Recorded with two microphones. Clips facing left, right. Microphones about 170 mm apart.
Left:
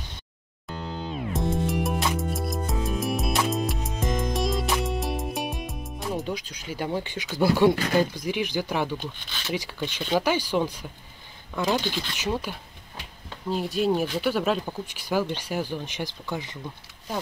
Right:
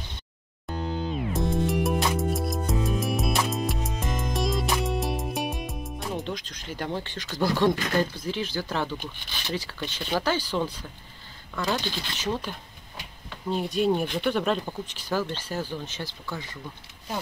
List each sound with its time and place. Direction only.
1.3 s music: centre (ahead or behind)
9.5 s speech: 10° left (ahead or behind)